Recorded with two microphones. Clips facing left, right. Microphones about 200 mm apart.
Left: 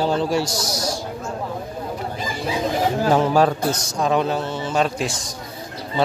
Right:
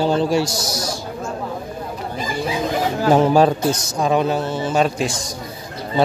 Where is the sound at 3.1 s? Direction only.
20° right (ahead or behind).